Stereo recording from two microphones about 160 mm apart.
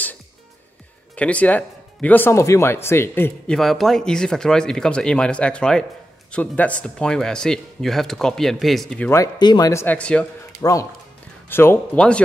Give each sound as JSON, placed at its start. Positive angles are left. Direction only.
{"t": 1.1, "sound": "speech", "side_deg": 10}
{"t": 3.5, "sound": "speech", "side_deg": 0}
{"t": 9.1, "sound": "speech", "side_deg": 25}
{"t": 10.6, "sound": "speech", "side_deg": 20}